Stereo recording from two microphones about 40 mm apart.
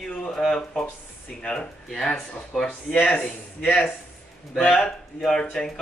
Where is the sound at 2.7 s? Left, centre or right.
Left.